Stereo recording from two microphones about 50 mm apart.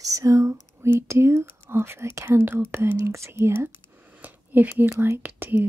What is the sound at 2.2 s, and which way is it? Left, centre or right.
Speech, right.